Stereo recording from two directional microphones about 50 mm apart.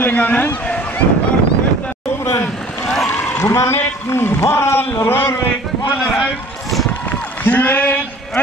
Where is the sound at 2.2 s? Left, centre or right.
Left.